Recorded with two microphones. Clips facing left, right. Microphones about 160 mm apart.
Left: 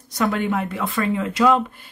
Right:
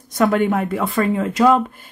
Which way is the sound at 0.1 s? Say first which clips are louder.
Right 5 dB; 50° right (ahead or behind).